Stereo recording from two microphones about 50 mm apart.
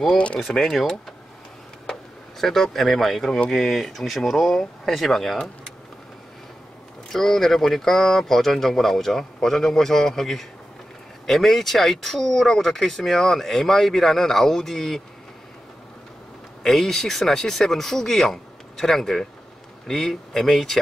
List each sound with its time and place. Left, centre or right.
0.2 s speech: left
2.4 s speech: centre
7.1 s speech: centre
16.6 s speech: centre